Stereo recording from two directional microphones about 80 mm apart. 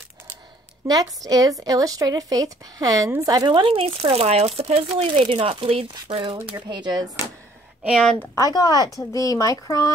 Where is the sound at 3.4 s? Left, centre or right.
Right.